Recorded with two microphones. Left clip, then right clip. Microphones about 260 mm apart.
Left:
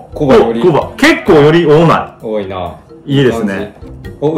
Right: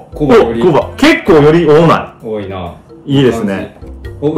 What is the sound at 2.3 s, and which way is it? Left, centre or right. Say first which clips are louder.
Speech: left 2 dB; centre.